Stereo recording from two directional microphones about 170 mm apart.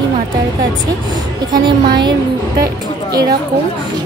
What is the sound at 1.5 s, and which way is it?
Speech, 25° right (ahead or behind).